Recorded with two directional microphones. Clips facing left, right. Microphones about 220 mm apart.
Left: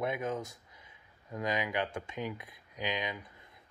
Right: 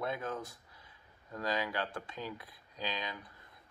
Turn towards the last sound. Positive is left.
turn(degrees=20)  # may be behind; listen again after turning